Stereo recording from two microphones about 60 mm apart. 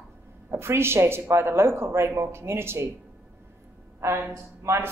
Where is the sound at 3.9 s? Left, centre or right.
Right.